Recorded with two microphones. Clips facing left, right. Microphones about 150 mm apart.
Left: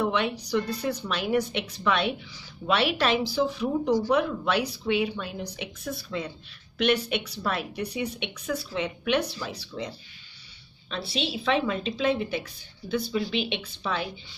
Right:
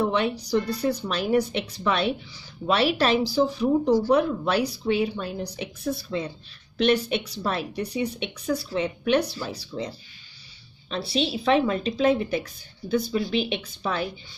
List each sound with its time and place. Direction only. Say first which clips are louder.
0.0 s a woman's voice: right 2 dB; 35° right (ahead or behind)